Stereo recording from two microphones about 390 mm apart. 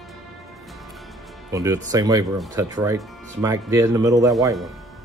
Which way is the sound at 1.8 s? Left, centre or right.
Centre.